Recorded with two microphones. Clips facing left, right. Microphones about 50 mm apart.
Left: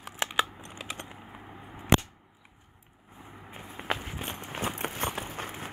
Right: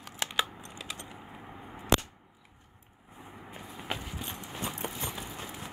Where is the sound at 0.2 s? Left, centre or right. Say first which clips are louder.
Left 4 dB; centre.